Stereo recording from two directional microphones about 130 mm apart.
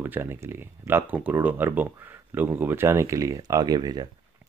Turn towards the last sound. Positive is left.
turn(degrees=-30)  # may be behind; listen again after turning